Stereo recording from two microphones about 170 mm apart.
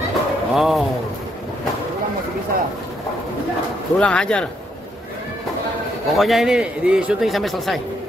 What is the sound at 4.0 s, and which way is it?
Speech, 5° left (ahead or behind).